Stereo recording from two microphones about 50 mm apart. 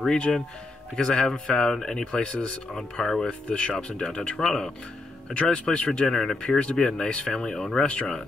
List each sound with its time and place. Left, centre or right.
0.0 s speech: centre
5.9 s speech: centre